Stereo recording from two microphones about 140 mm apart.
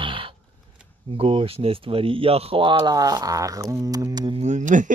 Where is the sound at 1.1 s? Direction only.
40° right (ahead or behind).